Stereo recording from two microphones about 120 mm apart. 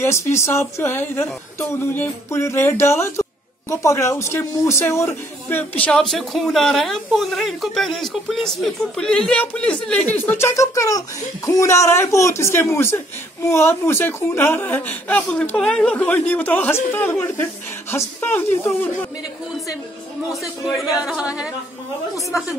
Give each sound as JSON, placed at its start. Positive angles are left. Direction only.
{"t": 0.0, "sound": "speech", "side_deg": 20}
{"t": 5.9, "sound": "a woman's voice", "side_deg": 5}
{"t": 20.4, "sound": "a man's voice", "side_deg": 0}